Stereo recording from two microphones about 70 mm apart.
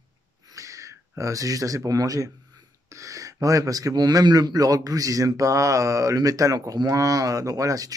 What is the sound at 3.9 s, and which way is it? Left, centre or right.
Speech, right.